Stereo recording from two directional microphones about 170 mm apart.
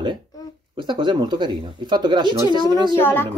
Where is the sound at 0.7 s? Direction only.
30° right (ahead or behind).